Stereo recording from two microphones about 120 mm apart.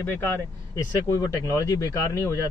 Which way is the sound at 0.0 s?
20° left (ahead or behind).